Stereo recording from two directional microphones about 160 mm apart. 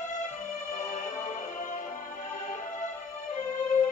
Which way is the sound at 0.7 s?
50° left (ahead or behind).